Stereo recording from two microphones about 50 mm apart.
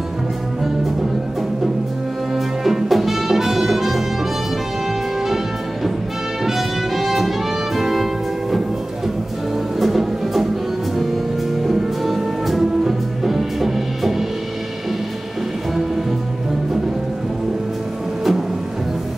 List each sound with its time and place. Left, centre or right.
2.3 s music: centre
6.4 s music: centre
11.6 s music: centre